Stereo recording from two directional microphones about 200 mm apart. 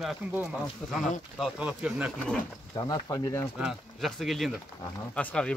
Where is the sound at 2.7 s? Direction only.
20° left (ahead or behind).